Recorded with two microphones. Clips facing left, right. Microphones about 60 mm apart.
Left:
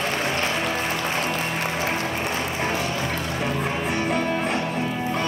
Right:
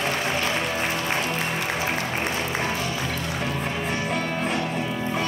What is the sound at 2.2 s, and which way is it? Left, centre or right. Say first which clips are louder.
Music: even; centre.